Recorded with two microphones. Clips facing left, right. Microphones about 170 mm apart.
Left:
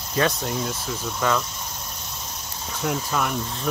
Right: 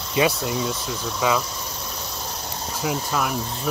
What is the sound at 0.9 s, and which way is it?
Cricket, 5° right (ahead or behind).